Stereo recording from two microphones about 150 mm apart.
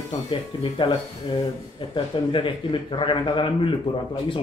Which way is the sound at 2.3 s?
30° left (ahead or behind).